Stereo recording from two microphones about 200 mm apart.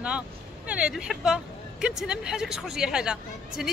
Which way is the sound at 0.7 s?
5° right (ahead or behind).